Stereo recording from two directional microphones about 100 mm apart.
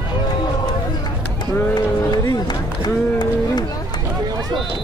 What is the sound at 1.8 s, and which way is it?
Run, 40° left (ahead or behind).